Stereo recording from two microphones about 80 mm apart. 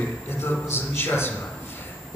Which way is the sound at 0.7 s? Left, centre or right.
Left.